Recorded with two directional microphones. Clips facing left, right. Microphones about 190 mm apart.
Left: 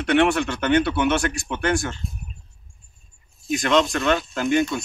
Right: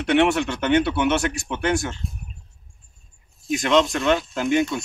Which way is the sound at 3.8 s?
10° right (ahead or behind).